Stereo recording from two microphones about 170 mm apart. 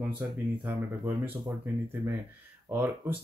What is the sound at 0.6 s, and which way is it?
Speech, 10° right (ahead or behind).